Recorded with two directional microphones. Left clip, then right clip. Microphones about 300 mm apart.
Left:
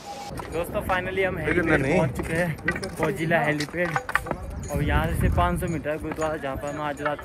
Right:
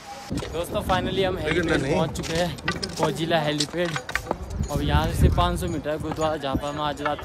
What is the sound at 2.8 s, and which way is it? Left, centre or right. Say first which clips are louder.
Speech: right 1 dB; centre.